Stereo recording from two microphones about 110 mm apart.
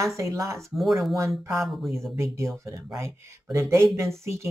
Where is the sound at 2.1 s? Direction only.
25° right (ahead or behind).